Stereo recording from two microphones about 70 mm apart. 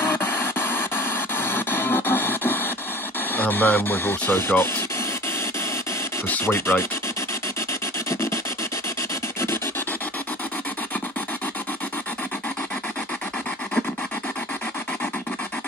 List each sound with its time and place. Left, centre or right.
0.0 s a sound: left
3.3 s speech: left
6.4 s speech: left
8.1 s rub: left